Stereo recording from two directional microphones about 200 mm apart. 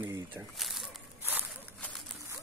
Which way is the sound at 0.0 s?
10° right (ahead or behind).